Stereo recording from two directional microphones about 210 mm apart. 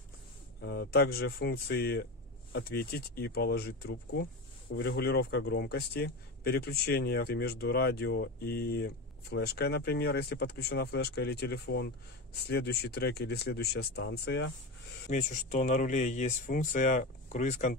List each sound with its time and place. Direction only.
0.6 s speech: 50° left (ahead or behind)
15.0 s speech: 35° left (ahead or behind)